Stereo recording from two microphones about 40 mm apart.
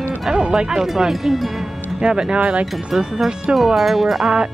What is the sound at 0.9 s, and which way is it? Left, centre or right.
Speech, centre.